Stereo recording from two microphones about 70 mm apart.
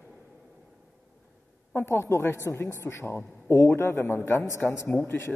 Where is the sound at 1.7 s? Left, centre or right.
Left.